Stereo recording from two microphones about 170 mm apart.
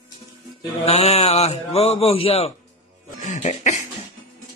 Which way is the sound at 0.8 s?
35° left (ahead or behind).